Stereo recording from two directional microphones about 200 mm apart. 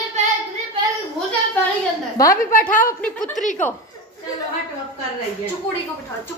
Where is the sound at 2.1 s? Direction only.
15° left (ahead or behind).